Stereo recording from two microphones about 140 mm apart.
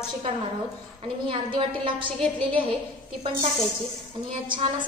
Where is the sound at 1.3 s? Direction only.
35° right (ahead or behind).